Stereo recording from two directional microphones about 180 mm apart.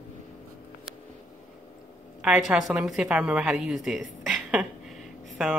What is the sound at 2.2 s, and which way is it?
A woman's voice, centre (ahead or behind).